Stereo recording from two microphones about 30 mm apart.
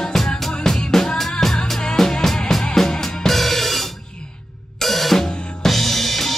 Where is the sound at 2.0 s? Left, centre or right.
Centre.